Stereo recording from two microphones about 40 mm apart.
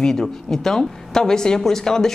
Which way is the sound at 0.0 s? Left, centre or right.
Centre.